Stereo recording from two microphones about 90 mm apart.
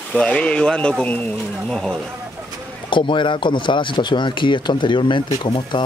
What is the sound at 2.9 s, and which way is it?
Speech, 65° left (ahead or behind).